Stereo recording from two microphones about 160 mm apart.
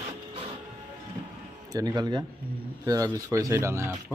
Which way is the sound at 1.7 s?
20° right (ahead or behind).